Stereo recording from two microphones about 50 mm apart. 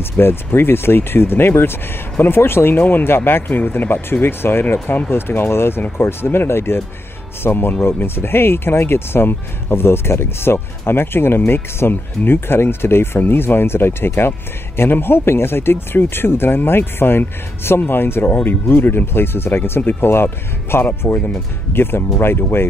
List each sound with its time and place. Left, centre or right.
0.2 s speech: left